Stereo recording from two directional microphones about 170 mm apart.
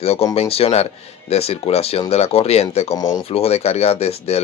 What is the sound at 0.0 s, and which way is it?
Speech, 35° left (ahead or behind).